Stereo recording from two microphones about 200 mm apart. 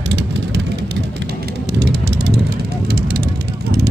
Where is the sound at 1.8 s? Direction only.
55° right (ahead or behind).